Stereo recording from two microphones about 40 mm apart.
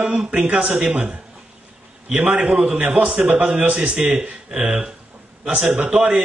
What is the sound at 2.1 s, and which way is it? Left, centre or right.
A man's voice, right.